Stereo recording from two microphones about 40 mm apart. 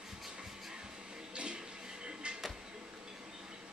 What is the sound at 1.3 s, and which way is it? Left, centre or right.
Music, right.